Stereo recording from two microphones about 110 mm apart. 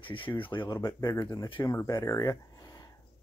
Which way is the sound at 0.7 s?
30° left (ahead or behind).